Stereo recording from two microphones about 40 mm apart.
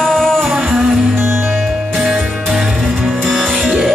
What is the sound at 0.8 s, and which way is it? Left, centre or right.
Music, centre.